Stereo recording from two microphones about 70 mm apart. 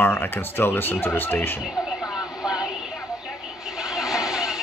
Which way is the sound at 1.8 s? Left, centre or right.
Centre.